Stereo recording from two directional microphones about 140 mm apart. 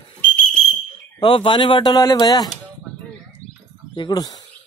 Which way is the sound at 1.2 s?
35° left (ahead or behind).